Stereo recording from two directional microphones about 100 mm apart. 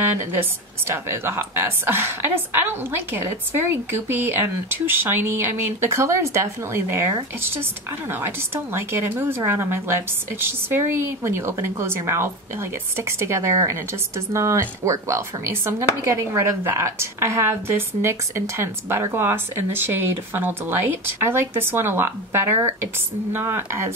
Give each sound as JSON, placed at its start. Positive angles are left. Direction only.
{"t": 0.0, "sound": "a woman's voice", "side_deg": -20}